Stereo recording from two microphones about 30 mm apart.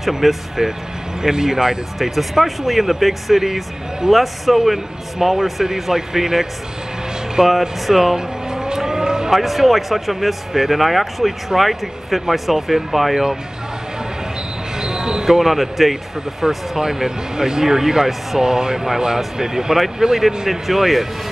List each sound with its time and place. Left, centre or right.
0.2 s speech: centre
0.6 s speech: centre
2.0 s speech: centre
8.2 s vehicle: right
9.3 s speech: centre
14.8 s basketball bounce: right
15.3 s speech: centre
16.4 s speech: centre